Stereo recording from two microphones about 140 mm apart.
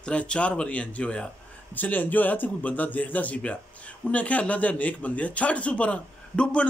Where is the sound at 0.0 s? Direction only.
5° left (ahead or behind).